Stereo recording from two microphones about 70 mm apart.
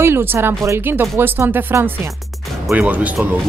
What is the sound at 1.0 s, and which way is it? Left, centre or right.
Speech, right.